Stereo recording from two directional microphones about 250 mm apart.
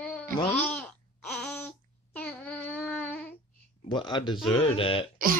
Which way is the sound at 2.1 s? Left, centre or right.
Centre.